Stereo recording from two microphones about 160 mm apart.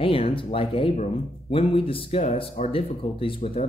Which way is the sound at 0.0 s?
35° left (ahead or behind).